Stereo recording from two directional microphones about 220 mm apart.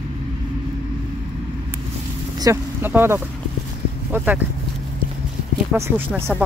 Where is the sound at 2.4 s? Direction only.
10° right (ahead or behind).